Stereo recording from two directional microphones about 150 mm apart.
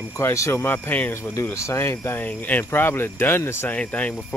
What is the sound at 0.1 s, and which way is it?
Speech, 20° left (ahead or behind).